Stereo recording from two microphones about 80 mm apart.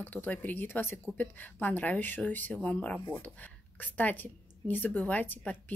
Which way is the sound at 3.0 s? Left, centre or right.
Left.